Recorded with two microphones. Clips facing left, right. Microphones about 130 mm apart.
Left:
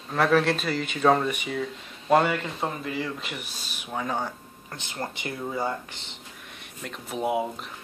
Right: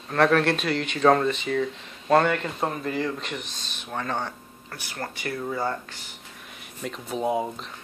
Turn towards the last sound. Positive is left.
turn(degrees=10)  # may be behind; listen again after turning